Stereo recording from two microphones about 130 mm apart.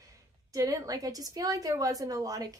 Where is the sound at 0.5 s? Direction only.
25° right (ahead or behind).